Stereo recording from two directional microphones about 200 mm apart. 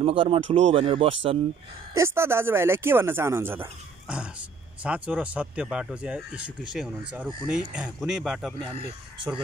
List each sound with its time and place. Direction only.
0.0 s speech: 25° right (ahead or behind)
2.0 s speech: 15° right (ahead or behind)